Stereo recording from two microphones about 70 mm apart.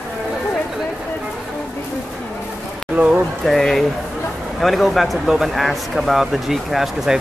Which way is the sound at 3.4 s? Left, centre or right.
Centre.